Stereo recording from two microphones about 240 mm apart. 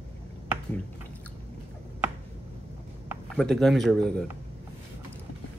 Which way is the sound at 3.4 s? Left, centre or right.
Centre.